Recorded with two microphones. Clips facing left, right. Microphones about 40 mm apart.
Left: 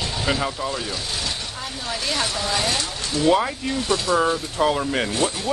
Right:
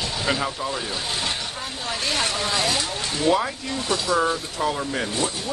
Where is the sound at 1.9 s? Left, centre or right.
Right.